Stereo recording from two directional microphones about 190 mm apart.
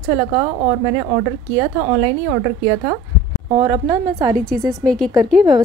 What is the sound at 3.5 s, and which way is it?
Speech, 30° right (ahead or behind).